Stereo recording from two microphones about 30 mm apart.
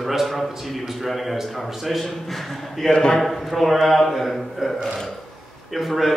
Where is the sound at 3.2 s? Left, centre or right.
Centre.